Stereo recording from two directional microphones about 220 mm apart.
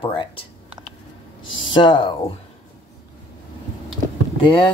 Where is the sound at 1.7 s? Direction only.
20° left (ahead or behind).